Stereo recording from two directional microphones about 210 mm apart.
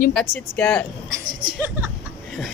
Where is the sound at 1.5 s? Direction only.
10° right (ahead or behind).